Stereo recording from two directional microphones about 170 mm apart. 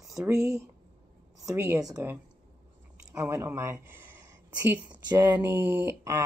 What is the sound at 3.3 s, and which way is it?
Speech, 15° right (ahead or behind).